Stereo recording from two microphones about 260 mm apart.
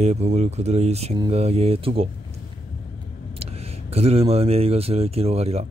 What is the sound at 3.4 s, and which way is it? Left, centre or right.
Speech, right.